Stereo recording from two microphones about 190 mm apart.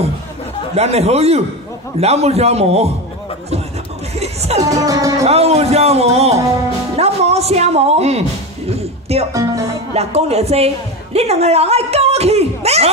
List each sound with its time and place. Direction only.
0.7 s speech: 35° right (ahead or behind)
4.1 s speech: 35° right (ahead or behind)
4.6 s music: 15° right (ahead or behind)
5.2 s speech: 35° right (ahead or behind)
7.0 s a sound: 35° right (ahead or behind)
9.3 s speech: 20° right (ahead or behind)
9.9 s speech: 35° right (ahead or behind)